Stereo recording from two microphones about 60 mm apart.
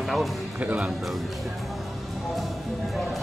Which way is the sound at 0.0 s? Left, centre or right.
Centre.